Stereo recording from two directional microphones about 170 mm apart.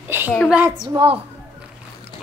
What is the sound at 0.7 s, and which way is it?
Speech, 25° right (ahead or behind).